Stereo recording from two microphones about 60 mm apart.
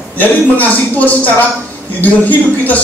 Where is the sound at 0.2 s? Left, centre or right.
Left.